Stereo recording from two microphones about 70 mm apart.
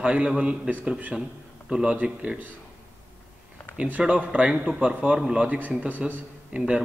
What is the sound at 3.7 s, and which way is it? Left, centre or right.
A man's voice, centre.